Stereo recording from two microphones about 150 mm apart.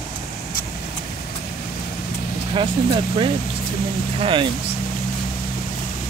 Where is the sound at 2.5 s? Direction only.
35° right (ahead or behind).